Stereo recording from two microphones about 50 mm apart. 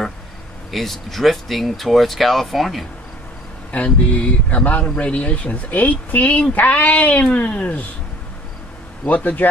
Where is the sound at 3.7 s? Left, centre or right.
Left.